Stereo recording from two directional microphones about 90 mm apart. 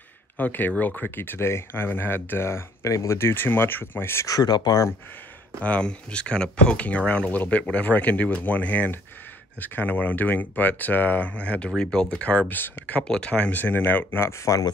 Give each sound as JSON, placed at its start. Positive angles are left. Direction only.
{"t": 0.4, "sound": "speech", "side_deg": 20}
{"t": 4.4, "sound": "speech", "side_deg": 50}
{"t": 5.6, "sound": "speech", "side_deg": 15}